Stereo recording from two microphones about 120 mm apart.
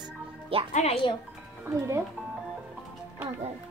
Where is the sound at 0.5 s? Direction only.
50° right (ahead or behind).